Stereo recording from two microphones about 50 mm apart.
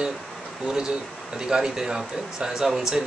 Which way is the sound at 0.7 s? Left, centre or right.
Centre.